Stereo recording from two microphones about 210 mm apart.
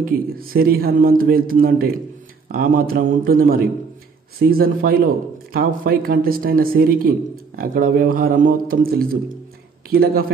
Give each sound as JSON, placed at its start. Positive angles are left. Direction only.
{"t": 0.0, "sound": "speech", "side_deg": -45}